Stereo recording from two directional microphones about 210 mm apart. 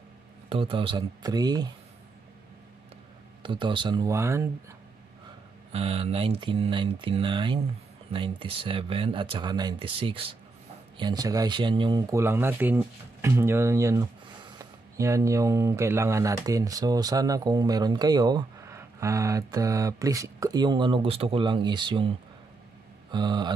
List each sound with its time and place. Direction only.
0.5 s speech: 25° right (ahead or behind)
3.4 s speech: 25° right (ahead or behind)
5.7 s speech: 30° right (ahead or behind)
23.1 s speech: 20° right (ahead or behind)